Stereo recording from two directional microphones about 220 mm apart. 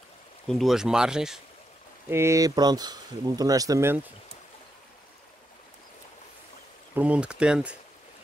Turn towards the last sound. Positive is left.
turn(degrees=-5)  # may be behind; listen again after turning